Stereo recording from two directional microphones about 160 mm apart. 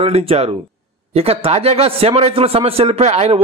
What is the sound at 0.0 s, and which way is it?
Speech, 40° right (ahead or behind).